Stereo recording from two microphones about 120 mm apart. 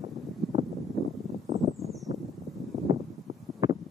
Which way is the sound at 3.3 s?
65° right (ahead or behind).